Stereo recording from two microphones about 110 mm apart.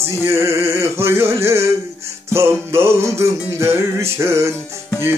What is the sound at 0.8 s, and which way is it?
Music, 25° right (ahead or behind).